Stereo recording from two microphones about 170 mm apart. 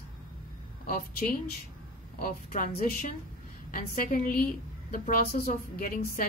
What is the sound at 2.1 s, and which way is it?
A woman's voice, 55° left (ahead or behind).